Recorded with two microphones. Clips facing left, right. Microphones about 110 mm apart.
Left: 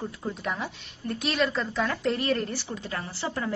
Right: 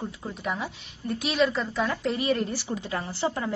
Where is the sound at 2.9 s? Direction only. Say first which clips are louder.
Right 4 dB; 20° right (ahead or behind).